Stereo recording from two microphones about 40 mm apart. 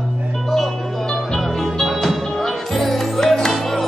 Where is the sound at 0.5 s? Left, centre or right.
Centre.